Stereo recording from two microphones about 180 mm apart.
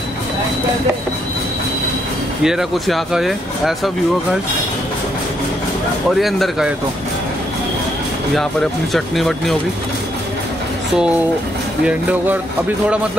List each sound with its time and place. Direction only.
2.4 s speech: 5° right (ahead or behind)
6.1 s speech: centre (ahead or behind)
8.4 s speech: centre (ahead or behind)
11.8 s speech: 10° right (ahead or behind)